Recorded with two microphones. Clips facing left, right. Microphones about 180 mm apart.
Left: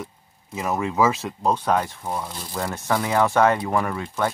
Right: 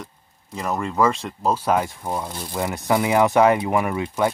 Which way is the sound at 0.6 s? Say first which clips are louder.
Even; 5° left (ahead or behind).